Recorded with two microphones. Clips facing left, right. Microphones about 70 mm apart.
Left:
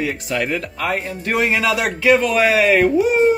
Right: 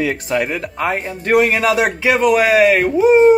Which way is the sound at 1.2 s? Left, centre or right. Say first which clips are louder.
Right 6 dB; right.